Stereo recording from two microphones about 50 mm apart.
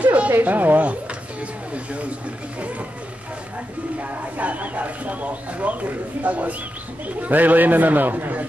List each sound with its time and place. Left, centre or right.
0.0 s a sound: right
0.4 s a man's voice: right
4.0 s a man's voice: right